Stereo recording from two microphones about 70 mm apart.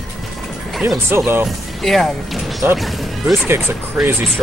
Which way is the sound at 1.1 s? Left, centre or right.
Right.